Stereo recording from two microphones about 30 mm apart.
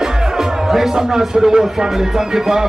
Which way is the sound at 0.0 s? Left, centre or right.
Centre.